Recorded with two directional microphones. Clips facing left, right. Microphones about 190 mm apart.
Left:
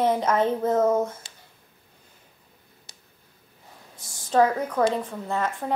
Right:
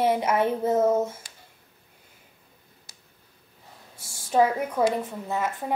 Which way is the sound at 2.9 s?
25° left (ahead or behind).